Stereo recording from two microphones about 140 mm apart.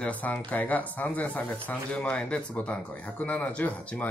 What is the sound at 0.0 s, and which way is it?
Speech, 10° left (ahead or behind).